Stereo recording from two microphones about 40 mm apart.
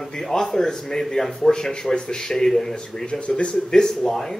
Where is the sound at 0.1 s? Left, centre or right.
Centre.